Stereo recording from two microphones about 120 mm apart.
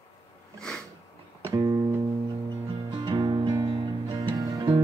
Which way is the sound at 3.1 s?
40° right (ahead or behind).